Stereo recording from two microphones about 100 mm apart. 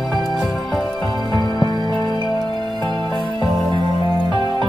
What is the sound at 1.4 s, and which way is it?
Music, 45° left (ahead or behind).